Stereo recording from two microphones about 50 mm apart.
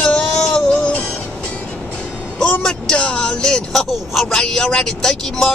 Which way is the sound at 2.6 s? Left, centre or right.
Centre.